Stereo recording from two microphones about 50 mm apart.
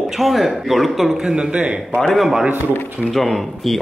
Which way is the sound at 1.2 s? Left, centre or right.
Centre.